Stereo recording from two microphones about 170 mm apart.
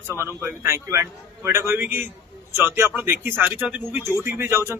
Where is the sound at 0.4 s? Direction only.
15° right (ahead or behind).